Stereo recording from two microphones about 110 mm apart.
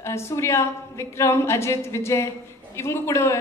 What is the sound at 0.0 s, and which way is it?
A man's voice, 25° left (ahead or behind).